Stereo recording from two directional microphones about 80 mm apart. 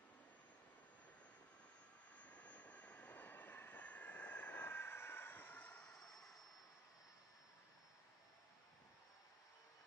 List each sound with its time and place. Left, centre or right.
2.2 s vehicle: centre
5.9 s vehicle: centre